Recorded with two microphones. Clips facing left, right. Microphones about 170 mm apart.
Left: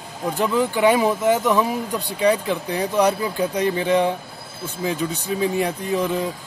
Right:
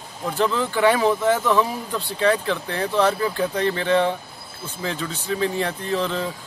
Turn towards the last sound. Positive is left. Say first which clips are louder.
# left 2 dB
turn(degrees=15)  # may be behind; listen again after turning